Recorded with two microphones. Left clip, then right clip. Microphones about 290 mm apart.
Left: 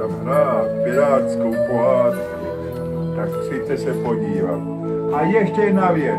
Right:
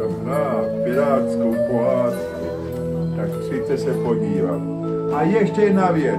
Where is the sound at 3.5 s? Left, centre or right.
Left.